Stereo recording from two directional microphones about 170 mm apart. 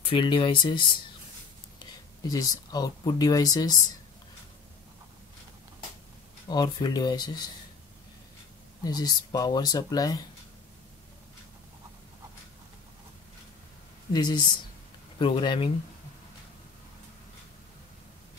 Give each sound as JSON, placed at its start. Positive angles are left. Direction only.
{"t": 0.0, "sound": "speech", "side_deg": 30}
{"t": 2.2, "sound": "speech", "side_deg": 20}
{"t": 6.5, "sound": "speech", "side_deg": 25}
{"t": 8.8, "sound": "speech", "side_deg": 25}
{"t": 14.1, "sound": "speech", "side_deg": 25}